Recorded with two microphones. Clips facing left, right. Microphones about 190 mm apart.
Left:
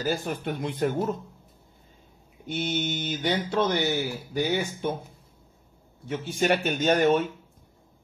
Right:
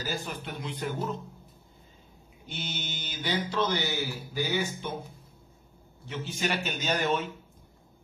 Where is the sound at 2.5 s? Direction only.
55° left (ahead or behind).